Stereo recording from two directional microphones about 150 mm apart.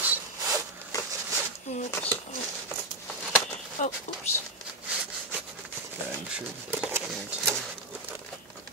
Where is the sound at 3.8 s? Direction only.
60° left (ahead or behind).